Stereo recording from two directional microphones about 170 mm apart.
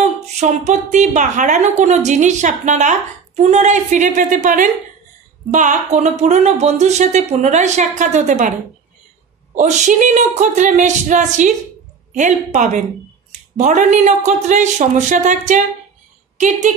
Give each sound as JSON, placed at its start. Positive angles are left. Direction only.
{"t": 0.0, "sound": "a woman's voice", "side_deg": -45}
{"t": 9.6, "sound": "a woman's voice", "side_deg": -45}